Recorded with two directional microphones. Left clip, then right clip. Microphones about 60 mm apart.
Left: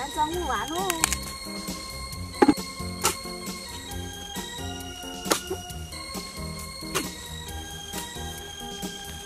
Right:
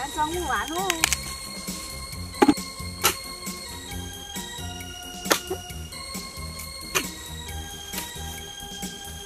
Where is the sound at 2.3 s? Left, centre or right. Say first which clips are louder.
Right 1 dB; right.